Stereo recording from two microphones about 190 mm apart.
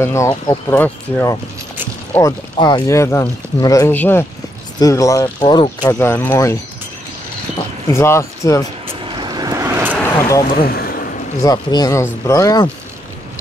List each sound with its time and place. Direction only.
0.0 s speech: 15° left (ahead or behind)
0.7 s speech: 10° left (ahead or behind)
2.5 s speech: 20° left (ahead or behind)
7.9 s speech: 15° left (ahead or behind)
9.1 s vehicle: 25° right (ahead or behind)
9.9 s a sound: 10° left (ahead or behind)
10.6 s a sound: 50° left (ahead or behind)
11.4 s speech: 20° left (ahead or behind)